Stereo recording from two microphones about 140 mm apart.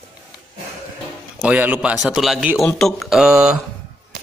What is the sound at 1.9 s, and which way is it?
Speech, centre (ahead or behind).